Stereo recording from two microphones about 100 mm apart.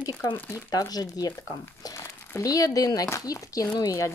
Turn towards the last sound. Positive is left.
turn(degrees=35)  # may be behind; listen again after turning